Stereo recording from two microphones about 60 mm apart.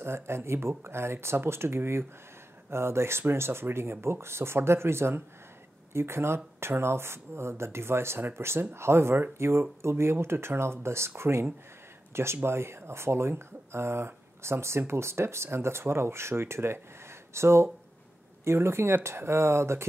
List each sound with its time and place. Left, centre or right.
0.0 s speech: right